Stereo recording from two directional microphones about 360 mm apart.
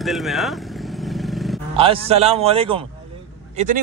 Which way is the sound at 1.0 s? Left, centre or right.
Centre.